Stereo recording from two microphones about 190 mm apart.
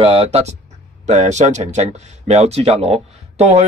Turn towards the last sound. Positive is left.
turn(degrees=-35)  # may be behind; listen again after turning